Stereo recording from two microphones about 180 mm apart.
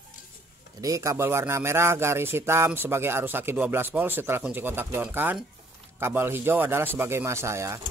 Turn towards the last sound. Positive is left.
turn(degrees=-15)  # may be behind; listen again after turning